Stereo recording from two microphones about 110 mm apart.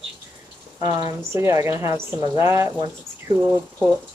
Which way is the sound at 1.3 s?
25° right (ahead or behind).